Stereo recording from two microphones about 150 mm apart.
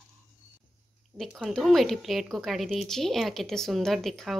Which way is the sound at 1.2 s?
Centre (ahead or behind).